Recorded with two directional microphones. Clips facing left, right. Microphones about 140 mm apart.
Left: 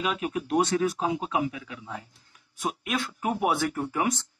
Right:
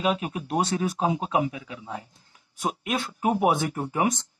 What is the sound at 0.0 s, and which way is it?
Speech, 25° right (ahead or behind).